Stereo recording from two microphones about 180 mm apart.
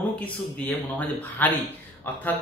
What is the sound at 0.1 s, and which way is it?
Speech, 5° left (ahead or behind).